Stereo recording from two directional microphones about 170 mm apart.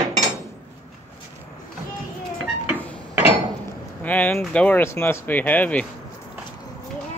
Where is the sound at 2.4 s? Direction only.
5° right (ahead or behind).